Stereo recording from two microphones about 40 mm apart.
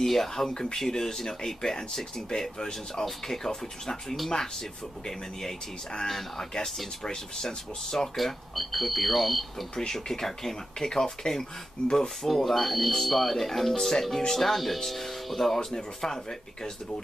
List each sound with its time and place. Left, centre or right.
0.0 s speech: centre
6.0 s speech: centre
8.2 s speech: centre
9.8 s speech: centre
12.3 s speech: centre
15.7 s speech: centre